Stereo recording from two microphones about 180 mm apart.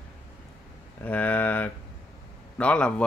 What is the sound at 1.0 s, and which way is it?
Speech, 10° left (ahead or behind).